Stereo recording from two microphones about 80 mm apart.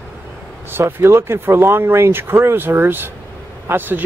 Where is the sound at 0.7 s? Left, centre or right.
Right.